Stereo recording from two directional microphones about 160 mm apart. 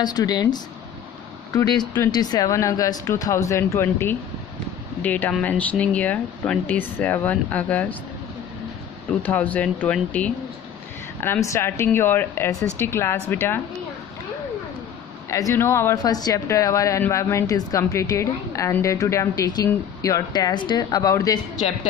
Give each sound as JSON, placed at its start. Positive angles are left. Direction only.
{"t": 0.0, "sound": "speech", "side_deg": 25}
{"t": 1.6, "sound": "speech", "side_deg": 10}
{"t": 2.0, "sound": "speech", "side_deg": 25}
{"t": 9.2, "sound": "speech", "side_deg": 10}
{"t": 15.2, "sound": "speech", "side_deg": 20}